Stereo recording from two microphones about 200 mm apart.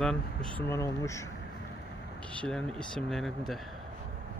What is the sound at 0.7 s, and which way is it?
Speech, 15° left (ahead or behind).